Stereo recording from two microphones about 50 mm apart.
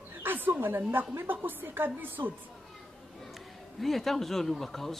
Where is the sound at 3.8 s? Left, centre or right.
Centre.